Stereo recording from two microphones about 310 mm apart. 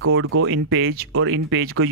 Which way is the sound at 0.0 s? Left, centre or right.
Right.